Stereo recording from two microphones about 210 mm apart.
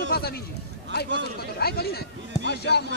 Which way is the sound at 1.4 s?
50° left (ahead or behind).